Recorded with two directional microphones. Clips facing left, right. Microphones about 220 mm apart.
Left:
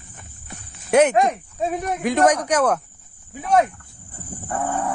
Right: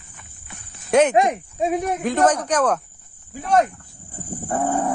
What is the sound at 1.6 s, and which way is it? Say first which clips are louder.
Speech: right 2 dB; 10° right (ahead or behind).